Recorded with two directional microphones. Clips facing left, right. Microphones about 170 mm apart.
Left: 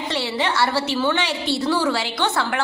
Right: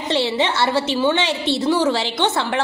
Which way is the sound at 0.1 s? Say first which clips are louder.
Right 5 dB; 25° right (ahead or behind).